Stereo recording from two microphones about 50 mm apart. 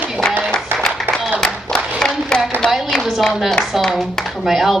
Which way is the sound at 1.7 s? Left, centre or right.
Centre.